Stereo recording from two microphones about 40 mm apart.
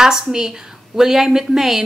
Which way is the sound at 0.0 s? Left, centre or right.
Centre.